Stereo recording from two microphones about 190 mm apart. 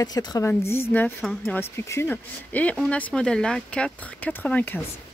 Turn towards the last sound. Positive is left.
turn(degrees=10)  # may be behind; listen again after turning